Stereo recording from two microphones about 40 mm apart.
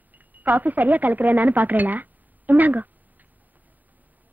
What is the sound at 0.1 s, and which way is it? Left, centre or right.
Speech, right.